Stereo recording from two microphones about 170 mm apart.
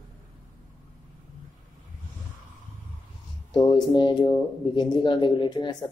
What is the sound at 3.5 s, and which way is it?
Speech, 25° left (ahead or behind).